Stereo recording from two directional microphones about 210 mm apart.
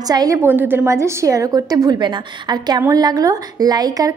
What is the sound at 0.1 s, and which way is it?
A woman's voice, 15° right (ahead or behind).